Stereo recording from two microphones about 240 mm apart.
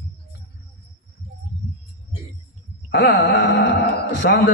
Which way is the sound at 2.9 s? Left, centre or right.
Left.